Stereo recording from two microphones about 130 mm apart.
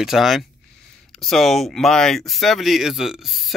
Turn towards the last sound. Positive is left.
turn(degrees=0)  # may be behind; listen again after turning